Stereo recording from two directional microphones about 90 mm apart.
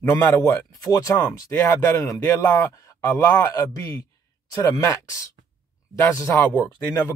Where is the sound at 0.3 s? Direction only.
40° left (ahead or behind).